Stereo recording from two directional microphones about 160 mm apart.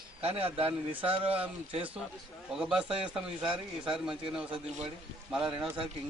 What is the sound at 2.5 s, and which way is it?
A man's voice, 5° right (ahead or behind).